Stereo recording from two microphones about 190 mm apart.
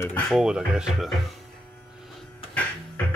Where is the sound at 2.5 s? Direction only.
5° left (ahead or behind).